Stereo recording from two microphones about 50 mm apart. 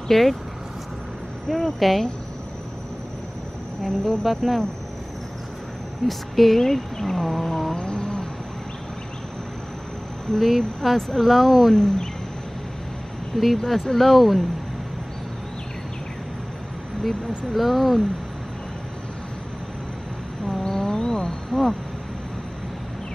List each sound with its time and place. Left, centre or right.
0.1 s speech: centre
1.5 s speech: centre
3.8 s speech: centre
6.0 s speech: centre
7.7 s a sound: centre
10.3 s speech: centre
11.7 s speech: centre
13.3 s speech: centre
17.5 s speech: centre
20.6 s wild animals: centre